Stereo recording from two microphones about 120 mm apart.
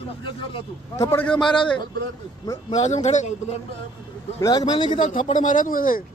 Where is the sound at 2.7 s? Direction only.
75° left (ahead or behind).